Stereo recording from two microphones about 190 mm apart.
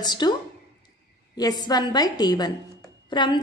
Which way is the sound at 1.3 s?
20° left (ahead or behind).